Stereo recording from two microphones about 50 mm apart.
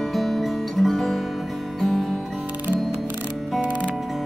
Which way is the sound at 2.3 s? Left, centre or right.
Right.